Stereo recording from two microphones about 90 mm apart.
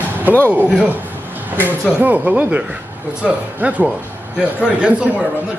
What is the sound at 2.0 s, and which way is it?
A man's voice, 15° right (ahead or behind).